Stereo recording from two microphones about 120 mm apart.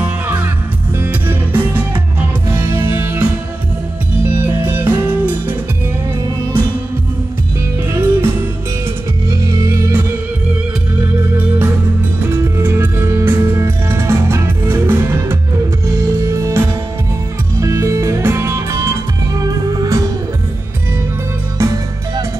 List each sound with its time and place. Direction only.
0.0 s music: 15° right (ahead or behind)
7.9 s music: 20° right (ahead or behind)
11.3 s music: 15° right (ahead or behind)
21.5 s music: 30° right (ahead or behind)